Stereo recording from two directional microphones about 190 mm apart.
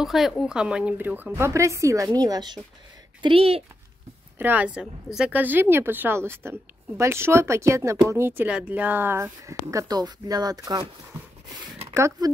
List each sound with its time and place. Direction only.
0.0 s speech: centre (ahead or behind); by 3.6 s 30° right (ahead or behind)
4.4 s speech: 10° right (ahead or behind)